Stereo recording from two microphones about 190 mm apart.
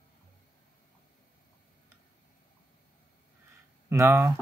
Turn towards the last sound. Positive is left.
turn(degrees=-15)  # may be behind; listen again after turning